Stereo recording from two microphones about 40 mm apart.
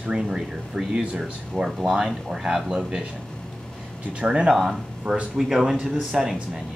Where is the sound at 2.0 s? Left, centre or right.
Centre.